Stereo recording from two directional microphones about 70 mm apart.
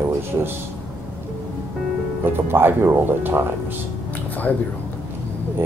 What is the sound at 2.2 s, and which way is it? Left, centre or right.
Speech, right.